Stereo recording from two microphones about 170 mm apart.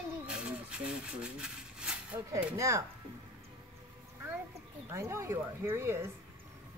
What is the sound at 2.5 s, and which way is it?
Speech, 20° right (ahead or behind).